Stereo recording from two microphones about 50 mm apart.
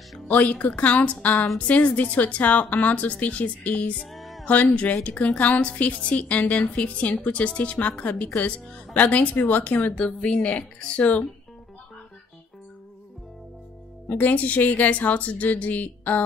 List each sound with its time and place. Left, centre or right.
0.3 s speech: left
4.1 s music: centre
5.0 s speech: left
14.0 s speech: left